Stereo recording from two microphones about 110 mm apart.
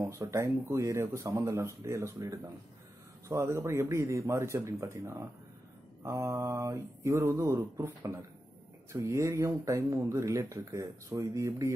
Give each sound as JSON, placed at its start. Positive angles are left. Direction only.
{"t": 0.0, "sound": "speech", "side_deg": -30}
{"t": 8.9, "sound": "speech", "side_deg": -25}